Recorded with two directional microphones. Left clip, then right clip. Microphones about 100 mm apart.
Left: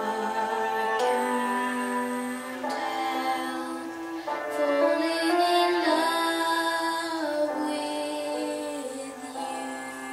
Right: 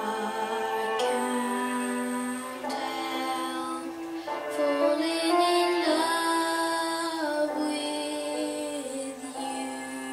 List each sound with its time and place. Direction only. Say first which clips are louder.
0.9 s music: left 3 dB; 5° left (ahead or behind)
2.8 s music: left 4 dB; centre (ahead or behind)
4.6 s music: left 1 dB; 40° left (ahead or behind)
4.8 s music: left 1 dB; centre (ahead or behind)